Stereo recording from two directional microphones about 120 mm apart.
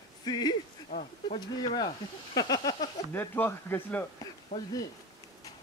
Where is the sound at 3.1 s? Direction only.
15° left (ahead or behind).